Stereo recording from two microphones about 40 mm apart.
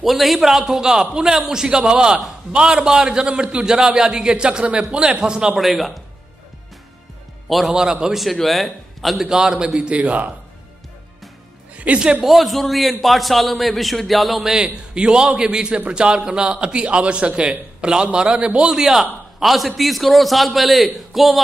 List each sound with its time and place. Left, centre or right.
0.0 s a man's voice: centre
5.6 s a man's voice: centre
7.4 s a man's voice: centre
7.7 s a man's voice: centre
8.2 s a man's voice: centre
9.2 s a man's voice: centre
9.9 s a man's voice: right
11.7 s music: right
12.2 s a man's voice: centre
14.5 s a man's voice: right
18.7 s a man's voice: centre